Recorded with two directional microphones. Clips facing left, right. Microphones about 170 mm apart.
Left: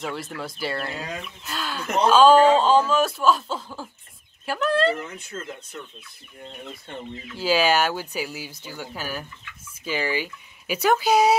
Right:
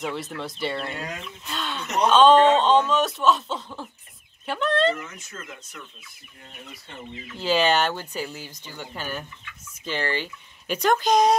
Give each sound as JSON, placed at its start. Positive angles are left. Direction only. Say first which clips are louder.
{"t": 0.0, "sound": "speech", "louder": "right 1 dB", "side_deg": 0}
{"t": 5.1, "sound": "speech", "louder": "left 5 dB", "side_deg": 30}
{"t": 7.2, "sound": "speech", "louder": "left 1 dB", "side_deg": 5}